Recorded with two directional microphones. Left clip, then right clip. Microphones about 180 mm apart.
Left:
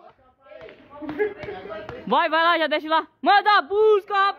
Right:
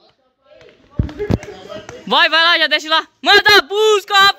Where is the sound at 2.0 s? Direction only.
5° right (ahead or behind).